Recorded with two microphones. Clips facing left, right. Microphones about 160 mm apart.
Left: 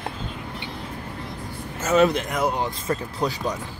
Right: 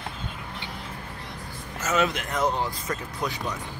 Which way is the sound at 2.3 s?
10° left (ahead or behind).